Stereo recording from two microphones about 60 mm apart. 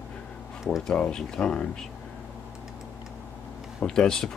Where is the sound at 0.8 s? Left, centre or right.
Centre.